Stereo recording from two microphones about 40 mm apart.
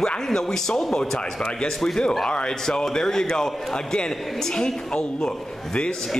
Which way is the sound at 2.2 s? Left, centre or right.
Left.